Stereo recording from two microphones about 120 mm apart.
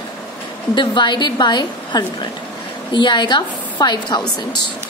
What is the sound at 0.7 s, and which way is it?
A woman's voice, 40° left (ahead or behind).